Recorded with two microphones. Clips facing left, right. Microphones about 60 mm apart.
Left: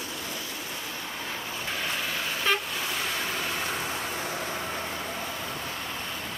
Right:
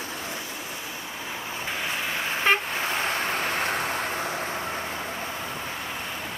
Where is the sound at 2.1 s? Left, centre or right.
Right.